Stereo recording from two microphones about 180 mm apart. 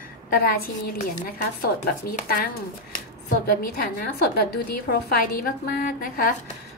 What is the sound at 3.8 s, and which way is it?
A woman's voice, 60° left (ahead or behind).